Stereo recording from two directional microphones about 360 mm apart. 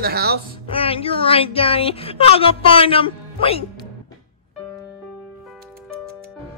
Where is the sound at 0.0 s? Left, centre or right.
Right.